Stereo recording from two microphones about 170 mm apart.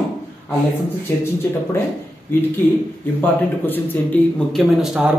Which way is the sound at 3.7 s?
5° left (ahead or behind).